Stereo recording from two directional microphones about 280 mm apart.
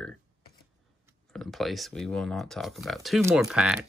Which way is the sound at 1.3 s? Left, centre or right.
Centre.